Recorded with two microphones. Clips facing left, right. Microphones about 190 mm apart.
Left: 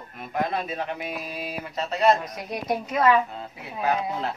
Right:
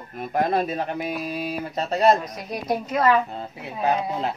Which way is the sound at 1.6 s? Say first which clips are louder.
Right 2 dB; 35° right (ahead or behind).